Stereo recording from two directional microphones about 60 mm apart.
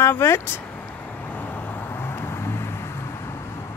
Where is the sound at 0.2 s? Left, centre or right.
Left.